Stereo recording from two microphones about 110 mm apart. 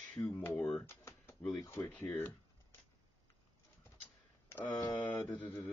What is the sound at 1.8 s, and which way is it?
Speech, 10° left (ahead or behind).